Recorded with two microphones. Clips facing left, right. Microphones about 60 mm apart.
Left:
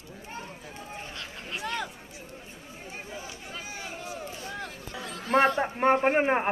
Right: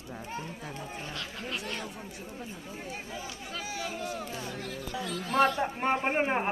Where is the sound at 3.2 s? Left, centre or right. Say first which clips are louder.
Right 1 dB; left.